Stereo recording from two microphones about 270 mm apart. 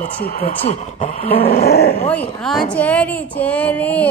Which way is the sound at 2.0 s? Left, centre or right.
Centre.